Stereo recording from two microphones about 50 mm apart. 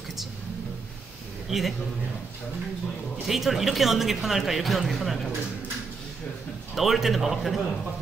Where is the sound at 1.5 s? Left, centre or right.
Centre.